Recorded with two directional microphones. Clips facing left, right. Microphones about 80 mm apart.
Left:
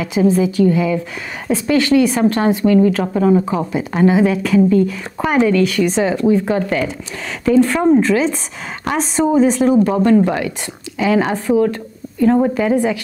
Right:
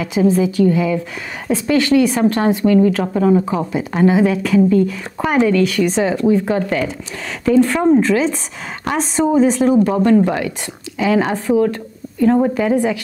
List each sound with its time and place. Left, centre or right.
0.0 s a woman's voice: centre